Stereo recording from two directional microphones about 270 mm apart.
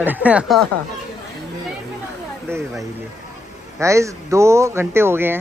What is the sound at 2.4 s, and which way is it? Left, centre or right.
Speech, centre.